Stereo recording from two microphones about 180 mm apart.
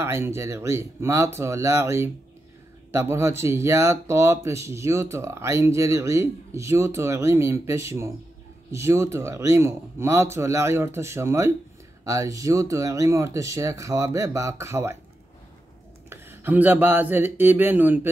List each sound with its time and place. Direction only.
0.0 s speech: 15° right (ahead or behind)
16.1 s speech: 10° right (ahead or behind)